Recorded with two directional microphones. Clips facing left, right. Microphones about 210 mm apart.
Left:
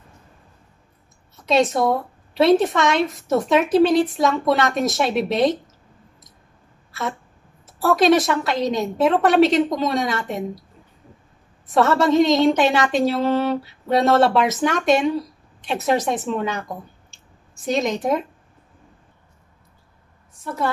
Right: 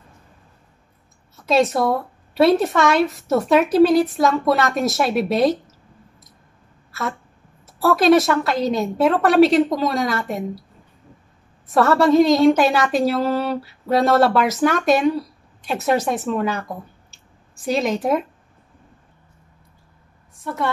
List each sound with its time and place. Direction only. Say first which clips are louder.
1.3 s a woman's voice: right 1 dB; centre (ahead or behind)
7.6 s a woman's voice: right 1 dB; centre (ahead or behind)
11.6 s a woman's voice: right 2 dB; centre (ahead or behind)
20.3 s a woman's voice: even; centre (ahead or behind)